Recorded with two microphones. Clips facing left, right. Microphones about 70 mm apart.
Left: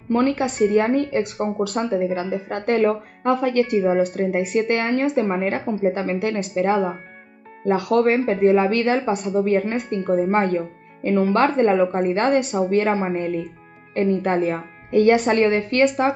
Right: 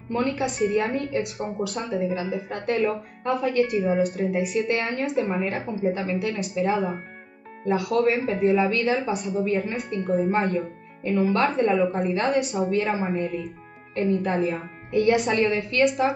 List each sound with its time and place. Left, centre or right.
0.1 s speech: left